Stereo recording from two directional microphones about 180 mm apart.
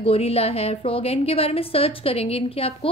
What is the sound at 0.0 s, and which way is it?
Speech, 35° left (ahead or behind).